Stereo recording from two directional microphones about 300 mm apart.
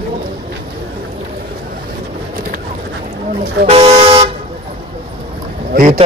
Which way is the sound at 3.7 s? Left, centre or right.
Centre.